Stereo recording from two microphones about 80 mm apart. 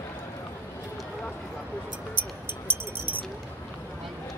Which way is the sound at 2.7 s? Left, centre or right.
Right.